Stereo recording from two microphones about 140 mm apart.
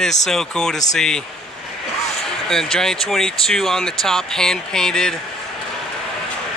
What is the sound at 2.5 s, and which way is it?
Speech, 5° left (ahead or behind).